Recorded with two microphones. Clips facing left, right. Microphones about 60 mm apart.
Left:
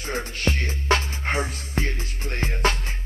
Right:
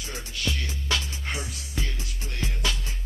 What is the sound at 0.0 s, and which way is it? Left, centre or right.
Music, left.